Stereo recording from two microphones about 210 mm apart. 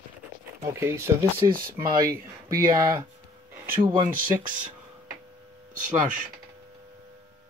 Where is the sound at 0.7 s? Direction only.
10° right (ahead or behind).